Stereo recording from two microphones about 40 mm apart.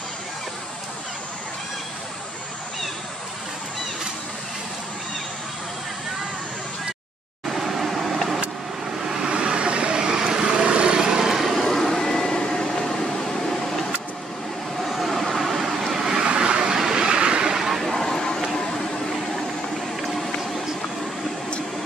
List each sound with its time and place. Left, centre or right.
7.4 s vehicle: centre
9.3 s vehicle: right
11.3 s vehicle: centre
14.8 s vehicle: centre; by 17.5 s right
17.5 s vehicle: centre
18.0 s a sound: centre